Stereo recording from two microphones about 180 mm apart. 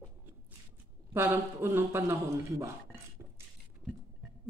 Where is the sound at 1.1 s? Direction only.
15° right (ahead or behind).